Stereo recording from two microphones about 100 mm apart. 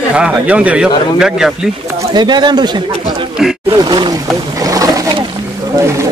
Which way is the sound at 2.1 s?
45° right (ahead or behind).